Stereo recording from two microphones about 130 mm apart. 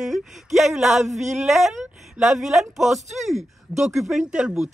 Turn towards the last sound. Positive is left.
turn(degrees=-5)  # may be behind; listen again after turning